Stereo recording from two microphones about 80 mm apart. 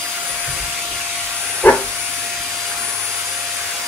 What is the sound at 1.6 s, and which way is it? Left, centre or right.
Vacuum cleaner, centre.